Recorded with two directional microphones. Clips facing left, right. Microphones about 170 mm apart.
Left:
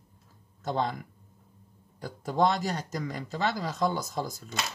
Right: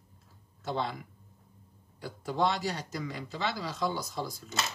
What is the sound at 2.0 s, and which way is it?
Speech, 45° left (ahead or behind).